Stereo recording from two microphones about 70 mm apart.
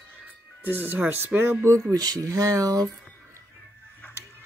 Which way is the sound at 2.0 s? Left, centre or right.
Right.